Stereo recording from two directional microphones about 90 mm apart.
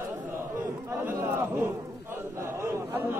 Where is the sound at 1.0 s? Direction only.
25° right (ahead or behind).